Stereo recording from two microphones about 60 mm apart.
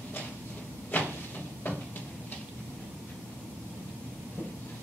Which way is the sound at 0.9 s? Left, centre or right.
Left.